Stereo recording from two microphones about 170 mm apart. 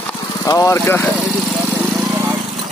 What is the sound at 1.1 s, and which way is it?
Lawn mower, 10° right (ahead or behind).